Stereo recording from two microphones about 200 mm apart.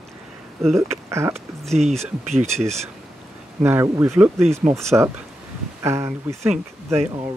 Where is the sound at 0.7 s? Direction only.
15° right (ahead or behind).